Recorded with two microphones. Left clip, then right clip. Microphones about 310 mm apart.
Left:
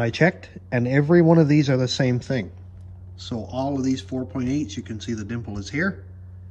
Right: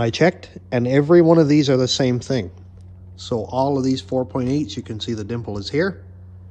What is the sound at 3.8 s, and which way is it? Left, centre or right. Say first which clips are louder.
Speech: right 6 dB; centre.